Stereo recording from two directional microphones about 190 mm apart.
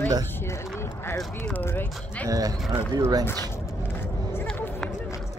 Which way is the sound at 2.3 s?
20° right (ahead or behind).